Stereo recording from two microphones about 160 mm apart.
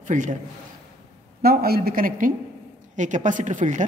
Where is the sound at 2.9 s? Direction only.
50° right (ahead or behind).